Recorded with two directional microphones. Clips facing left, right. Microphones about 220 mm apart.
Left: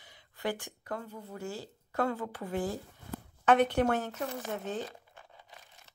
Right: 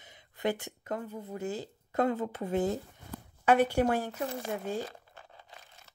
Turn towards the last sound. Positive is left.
turn(degrees=-10)  # may be behind; listen again after turning